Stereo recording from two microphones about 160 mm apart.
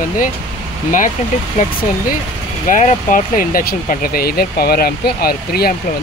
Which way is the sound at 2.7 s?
55° left (ahead or behind).